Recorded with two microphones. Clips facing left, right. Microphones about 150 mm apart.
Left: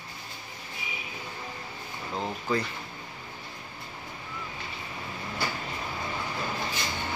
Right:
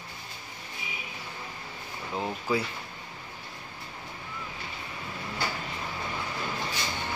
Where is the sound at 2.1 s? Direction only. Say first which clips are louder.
Even; 10° right (ahead or behind).